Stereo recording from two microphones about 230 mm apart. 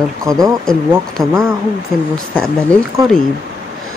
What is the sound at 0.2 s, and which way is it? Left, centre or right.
Speech, centre.